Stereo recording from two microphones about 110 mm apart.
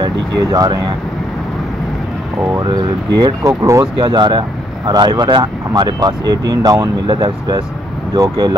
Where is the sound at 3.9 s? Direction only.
40° right (ahead or behind).